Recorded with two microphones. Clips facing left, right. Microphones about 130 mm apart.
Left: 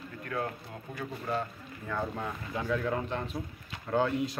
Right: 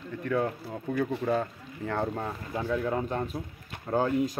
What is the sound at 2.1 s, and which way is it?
Speech, 30° right (ahead or behind).